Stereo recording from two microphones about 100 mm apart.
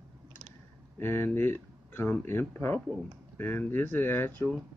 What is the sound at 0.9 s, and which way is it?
Speech, 20° left (ahead or behind).